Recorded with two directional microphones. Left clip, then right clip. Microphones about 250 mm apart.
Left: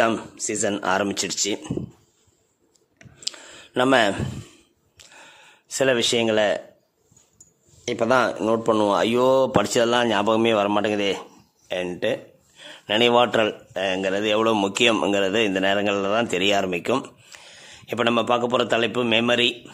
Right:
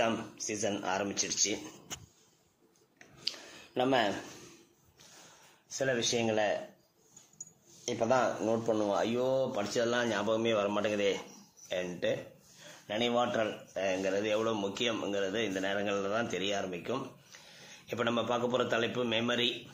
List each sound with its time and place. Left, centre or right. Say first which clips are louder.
0.0 s a man's voice: left 10 dB; left
3.0 s a sound: left 6 dB; left
5.8 s a man's voice: left 11 dB; left
7.8 s a man's voice: left 9 dB; left